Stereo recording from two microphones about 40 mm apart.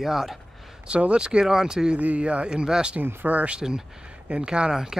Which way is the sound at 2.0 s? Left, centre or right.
Right.